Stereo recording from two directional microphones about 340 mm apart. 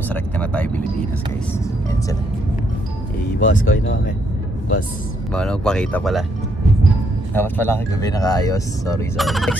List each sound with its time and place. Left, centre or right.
0.1 s vehicle: centre
3.3 s speech: left
5.3 s speech: centre
7.3 s speech: centre